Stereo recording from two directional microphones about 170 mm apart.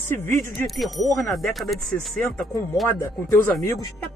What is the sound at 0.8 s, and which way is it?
Speech, centre (ahead or behind).